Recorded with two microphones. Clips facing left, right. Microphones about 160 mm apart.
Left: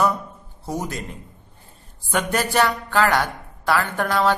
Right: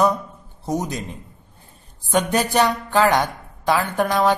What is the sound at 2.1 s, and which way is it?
A man's voice, 20° right (ahead or behind).